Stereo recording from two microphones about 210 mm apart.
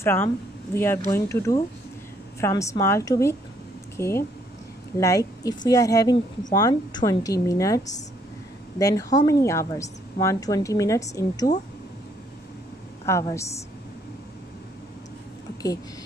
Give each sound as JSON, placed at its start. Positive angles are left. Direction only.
{"t": 0.0, "sound": "a woman's voice", "side_deg": 10}
{"t": 13.0, "sound": "a woman's voice", "side_deg": 15}